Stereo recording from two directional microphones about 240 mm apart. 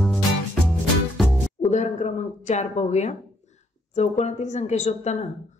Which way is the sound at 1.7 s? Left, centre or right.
Left.